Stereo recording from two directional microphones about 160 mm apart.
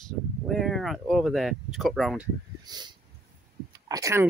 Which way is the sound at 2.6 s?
25° right (ahead or behind).